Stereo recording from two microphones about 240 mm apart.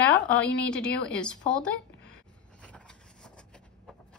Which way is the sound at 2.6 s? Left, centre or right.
Centre.